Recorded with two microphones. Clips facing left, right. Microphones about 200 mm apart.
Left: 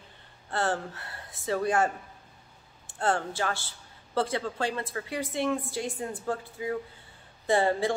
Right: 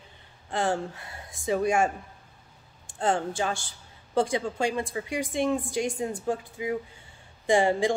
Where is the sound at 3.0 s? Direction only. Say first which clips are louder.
Right 2 dB; 15° right (ahead or behind).